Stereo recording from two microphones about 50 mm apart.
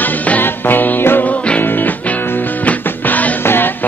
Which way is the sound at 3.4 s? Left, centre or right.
Left.